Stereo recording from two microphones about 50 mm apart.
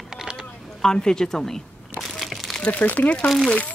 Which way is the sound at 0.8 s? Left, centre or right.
Centre.